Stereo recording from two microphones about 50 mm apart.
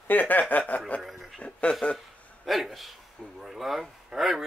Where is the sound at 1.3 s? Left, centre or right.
Left.